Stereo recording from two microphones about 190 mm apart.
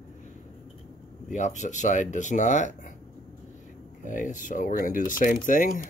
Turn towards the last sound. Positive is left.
turn(degrees=45)  # may be behind; listen again after turning